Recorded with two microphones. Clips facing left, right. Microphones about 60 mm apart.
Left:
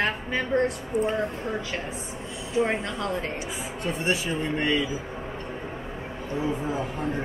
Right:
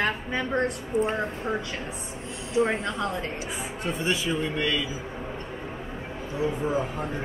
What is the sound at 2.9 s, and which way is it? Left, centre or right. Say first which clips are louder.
Speech: right 1 dB; right.